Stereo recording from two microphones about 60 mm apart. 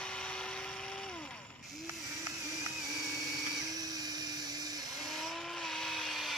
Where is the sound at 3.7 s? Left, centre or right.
Right.